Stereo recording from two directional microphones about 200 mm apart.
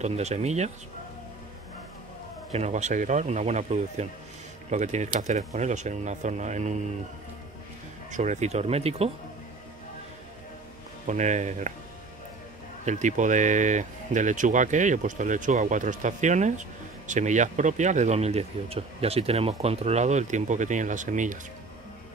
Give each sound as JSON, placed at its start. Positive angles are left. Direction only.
{"t": 0.0, "sound": "speech", "side_deg": -35}
{"t": 2.5, "sound": "speech", "side_deg": -35}
{"t": 8.1, "sound": "speech", "side_deg": -35}
{"t": 11.1, "sound": "speech", "side_deg": -35}
{"t": 12.8, "sound": "speech", "side_deg": -40}